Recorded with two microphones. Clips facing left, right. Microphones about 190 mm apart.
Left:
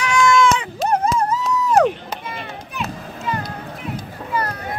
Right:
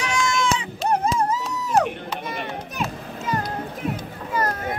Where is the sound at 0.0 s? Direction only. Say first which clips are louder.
Left 7 dB; 60° left (ahead or behind).